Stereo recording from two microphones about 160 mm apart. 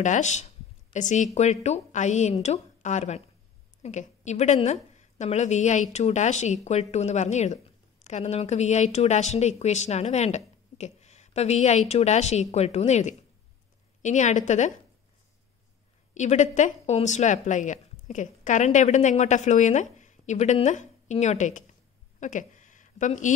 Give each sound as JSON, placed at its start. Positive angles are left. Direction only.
{"t": 0.0, "sound": "a woman's voice", "side_deg": 50}
{"t": 16.2, "sound": "speech", "side_deg": 50}
{"t": 22.2, "sound": "a sound", "side_deg": 50}